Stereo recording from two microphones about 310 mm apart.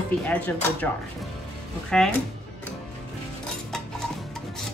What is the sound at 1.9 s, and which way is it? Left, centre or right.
Speech, centre.